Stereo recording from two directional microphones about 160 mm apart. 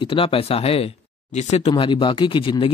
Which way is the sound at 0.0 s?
35° left (ahead or behind).